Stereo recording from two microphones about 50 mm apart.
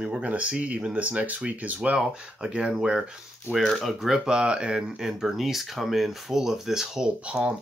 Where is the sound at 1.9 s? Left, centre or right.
Centre.